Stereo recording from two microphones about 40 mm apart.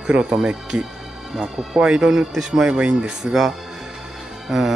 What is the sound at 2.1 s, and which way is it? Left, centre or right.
A man's voice, centre.